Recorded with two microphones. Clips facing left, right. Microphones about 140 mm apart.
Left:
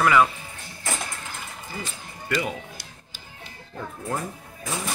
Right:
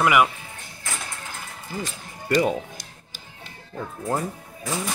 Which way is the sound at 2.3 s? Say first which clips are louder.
Right 8 dB; 40° right (ahead or behind).